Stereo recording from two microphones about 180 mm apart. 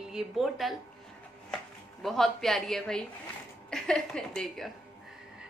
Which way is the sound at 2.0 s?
Centre (ahead or behind).